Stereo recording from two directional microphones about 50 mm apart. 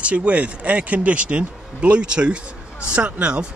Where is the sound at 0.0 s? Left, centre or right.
Right.